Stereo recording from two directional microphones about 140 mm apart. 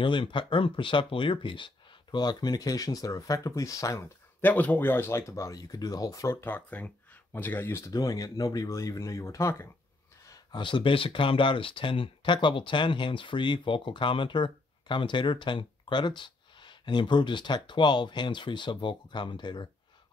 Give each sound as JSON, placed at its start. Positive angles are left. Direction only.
{"t": 0.0, "sound": "speech", "side_deg": 35}
{"t": 6.3, "sound": "speech", "side_deg": 15}